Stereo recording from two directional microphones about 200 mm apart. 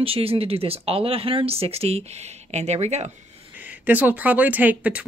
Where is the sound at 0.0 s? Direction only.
30° right (ahead or behind).